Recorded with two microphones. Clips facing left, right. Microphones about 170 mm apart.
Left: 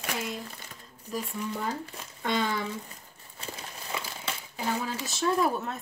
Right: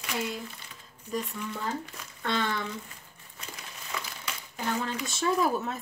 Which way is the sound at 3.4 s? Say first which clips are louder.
Left 4 dB; 30° left (ahead or behind).